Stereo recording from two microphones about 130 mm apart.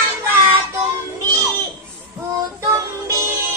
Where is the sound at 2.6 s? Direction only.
25° right (ahead or behind).